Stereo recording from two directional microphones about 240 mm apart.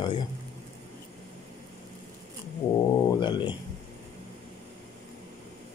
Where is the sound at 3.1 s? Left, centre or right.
Centre.